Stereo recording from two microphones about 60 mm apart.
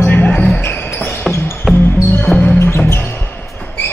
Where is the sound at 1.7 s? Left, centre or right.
Centre.